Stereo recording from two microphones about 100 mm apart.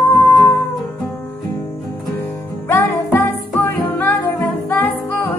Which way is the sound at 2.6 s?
25° left (ahead or behind).